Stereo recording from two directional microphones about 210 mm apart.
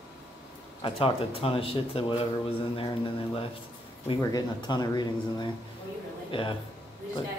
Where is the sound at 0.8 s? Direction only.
25° left (ahead or behind).